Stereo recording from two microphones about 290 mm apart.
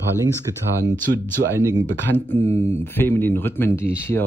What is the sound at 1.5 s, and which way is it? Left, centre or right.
Speech, centre.